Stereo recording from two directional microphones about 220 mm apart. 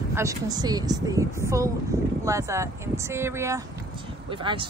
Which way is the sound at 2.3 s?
15° right (ahead or behind).